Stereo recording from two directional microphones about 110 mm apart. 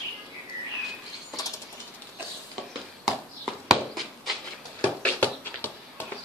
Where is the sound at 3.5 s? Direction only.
Centre (ahead or behind).